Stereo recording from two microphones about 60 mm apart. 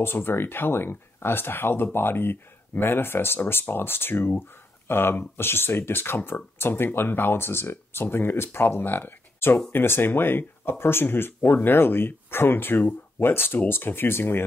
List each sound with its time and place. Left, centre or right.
0.0 s speech: left